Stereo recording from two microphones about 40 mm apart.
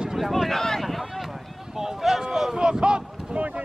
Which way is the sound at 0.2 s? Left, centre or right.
Centre.